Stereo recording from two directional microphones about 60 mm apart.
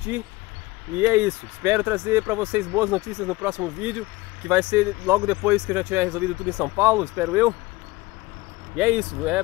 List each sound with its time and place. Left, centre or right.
0.9 s speech: right
2.5 s speech: right
8.7 s speech: centre